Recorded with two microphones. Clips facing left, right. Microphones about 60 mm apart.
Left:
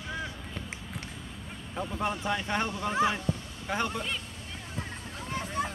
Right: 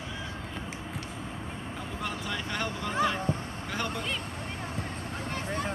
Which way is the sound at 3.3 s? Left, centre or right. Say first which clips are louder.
Right 2 dB; right.